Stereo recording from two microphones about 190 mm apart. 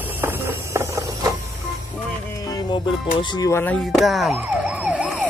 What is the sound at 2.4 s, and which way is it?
Music, 20° left (ahead or behind).